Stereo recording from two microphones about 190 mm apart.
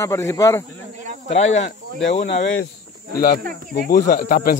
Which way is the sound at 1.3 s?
35° left (ahead or behind).